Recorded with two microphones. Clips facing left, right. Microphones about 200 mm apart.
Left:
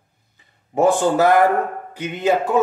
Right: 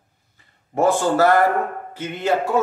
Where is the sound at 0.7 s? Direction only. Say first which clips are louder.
Left 2 dB; 15° left (ahead or behind).